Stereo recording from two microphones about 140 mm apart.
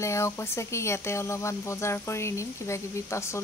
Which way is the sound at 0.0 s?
20° left (ahead or behind).